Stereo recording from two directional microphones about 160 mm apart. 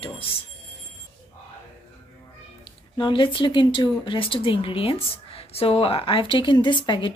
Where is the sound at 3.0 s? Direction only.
30° left (ahead or behind).